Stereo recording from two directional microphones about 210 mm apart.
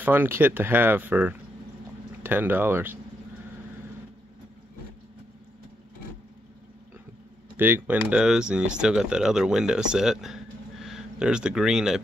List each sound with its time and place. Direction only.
0.0 s speech: 10° right (ahead or behind)
7.5 s speech: 10° right (ahead or behind)